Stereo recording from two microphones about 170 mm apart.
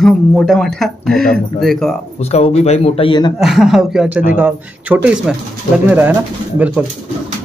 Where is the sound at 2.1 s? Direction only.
40° left (ahead or behind).